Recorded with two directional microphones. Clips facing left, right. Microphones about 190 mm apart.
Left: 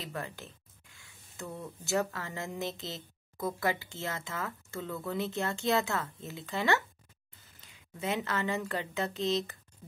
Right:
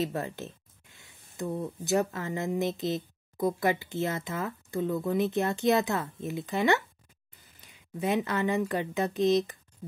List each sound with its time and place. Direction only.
0.0 s speech: 25° right (ahead or behind)